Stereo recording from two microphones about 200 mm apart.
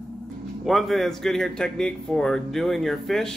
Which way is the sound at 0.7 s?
Centre (ahead or behind).